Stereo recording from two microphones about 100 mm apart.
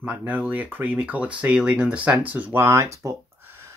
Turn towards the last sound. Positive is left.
turn(degrees=-25)  # may be behind; listen again after turning